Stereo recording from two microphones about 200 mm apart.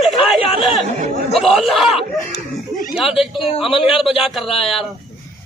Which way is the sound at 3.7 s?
25° left (ahead or behind).